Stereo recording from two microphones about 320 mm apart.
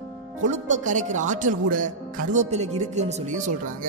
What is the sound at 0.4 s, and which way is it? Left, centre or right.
A man's voice, right.